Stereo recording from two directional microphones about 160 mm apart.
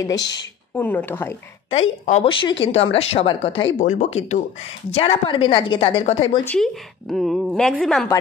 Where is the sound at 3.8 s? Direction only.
50° left (ahead or behind).